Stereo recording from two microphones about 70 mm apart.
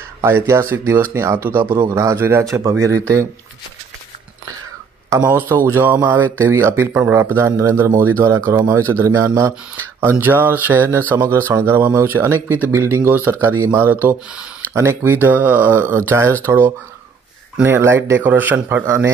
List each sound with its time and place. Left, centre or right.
0.2 s speech: right
1.9 s speech: right
2.1 s speech: right
2.8 s speech: right
5.3 s speech: right
9.9 s speech: right
11.1 s speech: right
14.7 s speech: right
15.2 s speech: right
16.4 s speech: right
18.2 s speech: right